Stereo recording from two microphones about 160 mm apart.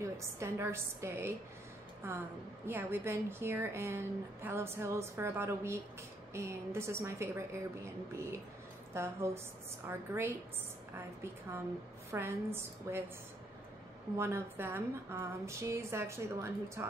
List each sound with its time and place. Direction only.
0.0 s a woman's voice: 15° right (ahead or behind)
12.1 s a woman's voice: 15° right (ahead or behind)
14.1 s a woman's voice: 15° right (ahead or behind)